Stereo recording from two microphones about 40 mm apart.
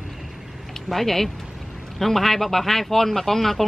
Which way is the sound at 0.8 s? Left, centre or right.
Centre.